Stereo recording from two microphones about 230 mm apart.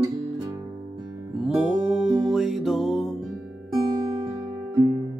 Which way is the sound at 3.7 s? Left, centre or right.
Right.